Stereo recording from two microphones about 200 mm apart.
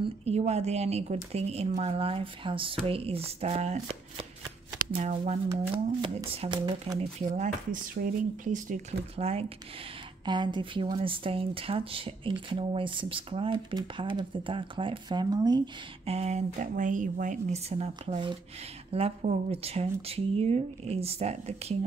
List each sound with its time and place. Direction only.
0.0 s speech: 30° right (ahead or behind)
7.2 s speech: 35° right (ahead or behind)